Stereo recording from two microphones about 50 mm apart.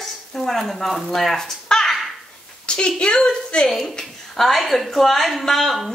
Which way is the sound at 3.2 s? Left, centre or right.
Centre.